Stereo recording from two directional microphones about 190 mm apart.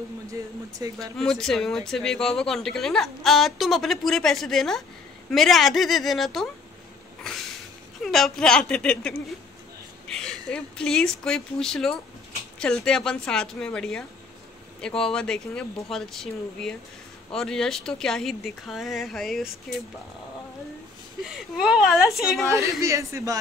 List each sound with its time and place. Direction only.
0.3 s speech: 20° right (ahead or behind)
1.1 s speech: centre (ahead or behind)
8.0 s speech: centre (ahead or behind)
21.2 s speech: centre (ahead or behind)
22.5 s speech: 15° right (ahead or behind)